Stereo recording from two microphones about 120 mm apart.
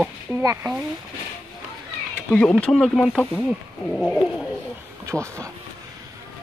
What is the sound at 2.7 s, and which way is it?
Speech, centre (ahead or behind).